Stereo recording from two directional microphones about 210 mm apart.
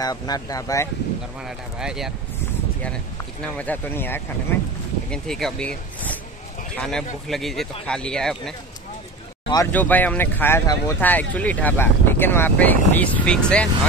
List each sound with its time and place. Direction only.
0.0 s speech: 20° left (ahead or behind)
1.8 s speech: centre (ahead or behind)
3.5 s speech: 10° left (ahead or behind)